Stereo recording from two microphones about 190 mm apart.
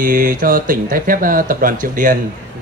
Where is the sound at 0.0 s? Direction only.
45° right (ahead or behind).